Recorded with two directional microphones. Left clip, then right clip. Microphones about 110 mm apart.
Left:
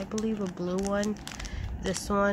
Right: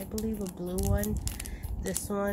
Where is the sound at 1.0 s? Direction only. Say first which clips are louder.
Left 3 dB; 10° left (ahead or behind).